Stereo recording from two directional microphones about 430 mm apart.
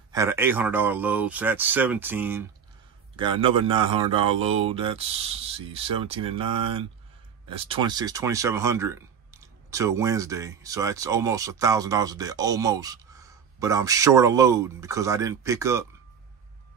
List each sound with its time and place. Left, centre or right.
0.1 s speech: centre